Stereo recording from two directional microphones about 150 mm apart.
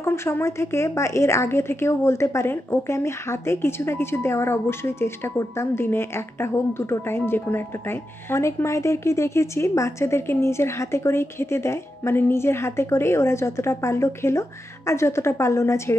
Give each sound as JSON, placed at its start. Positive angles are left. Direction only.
{"t": 0.0, "sound": "speech", "side_deg": 15}